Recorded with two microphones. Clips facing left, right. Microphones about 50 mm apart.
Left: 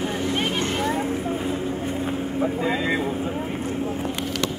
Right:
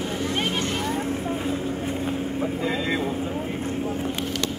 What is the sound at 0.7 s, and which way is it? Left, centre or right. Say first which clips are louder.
Boat: left 2 dB; centre.